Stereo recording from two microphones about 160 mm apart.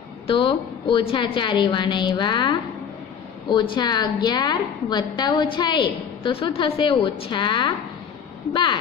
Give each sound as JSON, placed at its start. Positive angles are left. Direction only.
{"t": 0.3, "sound": "a woman's voice", "side_deg": 35}